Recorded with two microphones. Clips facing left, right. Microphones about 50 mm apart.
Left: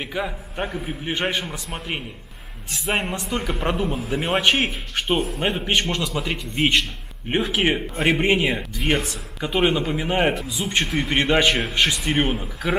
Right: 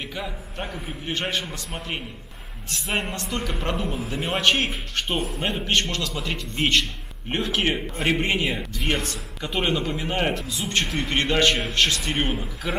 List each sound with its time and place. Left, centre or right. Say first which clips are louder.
0.0 s a man's voice: left 5 dB; centre